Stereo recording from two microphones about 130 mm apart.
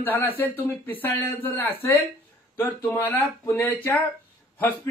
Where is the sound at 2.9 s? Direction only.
15° left (ahead or behind).